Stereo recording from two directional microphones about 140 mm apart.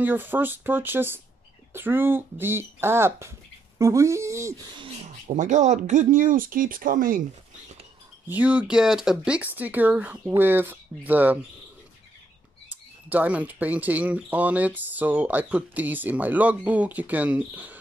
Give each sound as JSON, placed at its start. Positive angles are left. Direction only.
{"t": 0.0, "sound": "speech", "side_deg": -15}
{"t": 5.3, "sound": "speech", "side_deg": -60}
{"t": 8.3, "sound": "speech", "side_deg": -10}
{"t": 13.1, "sound": "speech", "side_deg": -10}